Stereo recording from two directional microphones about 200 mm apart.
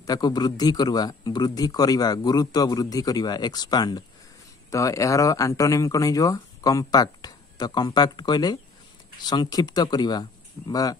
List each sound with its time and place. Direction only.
0.0 s a man's voice: 20° left (ahead or behind)